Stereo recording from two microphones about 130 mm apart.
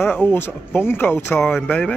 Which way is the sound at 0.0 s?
15° left (ahead or behind).